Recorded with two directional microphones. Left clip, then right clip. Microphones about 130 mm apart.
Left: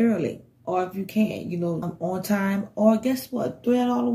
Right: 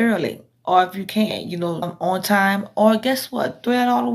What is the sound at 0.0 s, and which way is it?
Speech, 25° left (ahead or behind).